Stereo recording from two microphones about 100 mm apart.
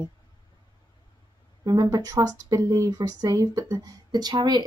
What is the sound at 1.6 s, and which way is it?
Speech, 40° right (ahead or behind).